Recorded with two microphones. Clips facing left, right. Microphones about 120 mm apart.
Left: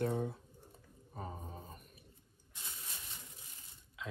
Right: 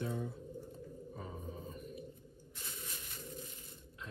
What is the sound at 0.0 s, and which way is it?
Pigeon, 60° left (ahead or behind).